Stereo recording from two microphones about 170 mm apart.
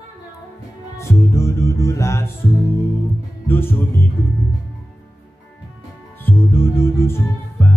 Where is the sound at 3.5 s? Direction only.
10° left (ahead or behind).